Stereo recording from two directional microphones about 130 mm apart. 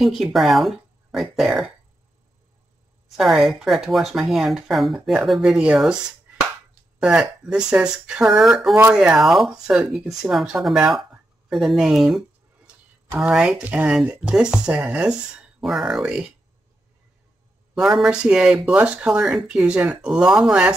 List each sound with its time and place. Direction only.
0.0 s speech: centre (ahead or behind)
3.2 s speech: centre (ahead or behind)
13.2 s speech: 5° right (ahead or behind)
17.7 s speech: centre (ahead or behind)